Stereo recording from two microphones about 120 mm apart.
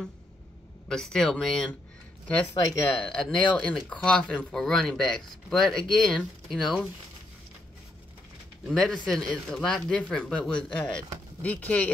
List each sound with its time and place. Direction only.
0.8 s speech: 5° left (ahead or behind)
2.7 s speech: 25° left (ahead or behind)
3.0 s speech: 5° left (ahead or behind)
8.6 s speech: centre (ahead or behind)